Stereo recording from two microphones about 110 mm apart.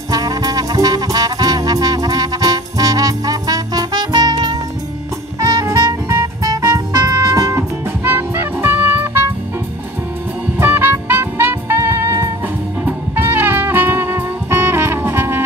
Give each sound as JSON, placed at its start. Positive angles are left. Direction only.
{"t": 0.1, "sound": "music", "side_deg": -35}
{"t": 10.6, "sound": "music", "side_deg": -20}